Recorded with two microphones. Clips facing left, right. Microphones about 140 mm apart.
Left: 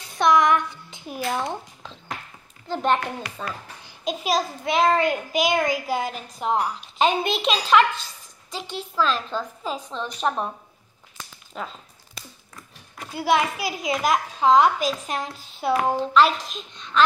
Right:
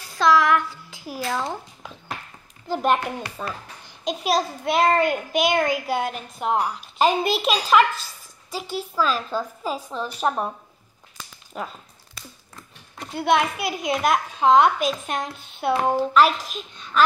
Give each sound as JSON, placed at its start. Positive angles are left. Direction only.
{"t": 0.0, "sound": "a child's voice", "side_deg": 20}
{"t": 2.7, "sound": "a child's voice", "side_deg": -10}
{"t": 11.1, "sound": "a sound", "side_deg": -5}
{"t": 13.0, "sound": "a child's voice", "side_deg": 5}